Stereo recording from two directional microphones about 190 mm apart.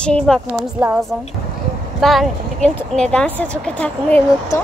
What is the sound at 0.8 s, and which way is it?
A woman's voice, 5° right (ahead or behind).